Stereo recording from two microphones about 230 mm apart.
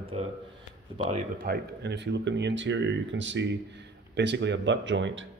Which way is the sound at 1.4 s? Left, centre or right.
Right.